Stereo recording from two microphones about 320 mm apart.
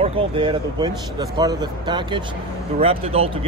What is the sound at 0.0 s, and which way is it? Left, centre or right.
Speech, centre.